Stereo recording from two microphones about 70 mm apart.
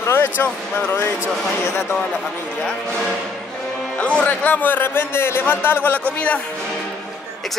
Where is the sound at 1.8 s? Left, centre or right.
Centre; by 6.0 s left.